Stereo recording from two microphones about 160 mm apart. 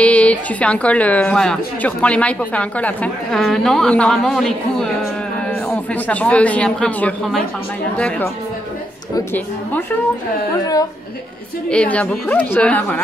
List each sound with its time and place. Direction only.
0.0 s a woman's voice: 10° left (ahead or behind)
9.1 s a woman's voice: 15° left (ahead or behind)
11.7 s a woman's voice: 5° left (ahead or behind)